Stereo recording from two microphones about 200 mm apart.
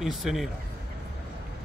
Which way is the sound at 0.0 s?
Centre (ahead or behind).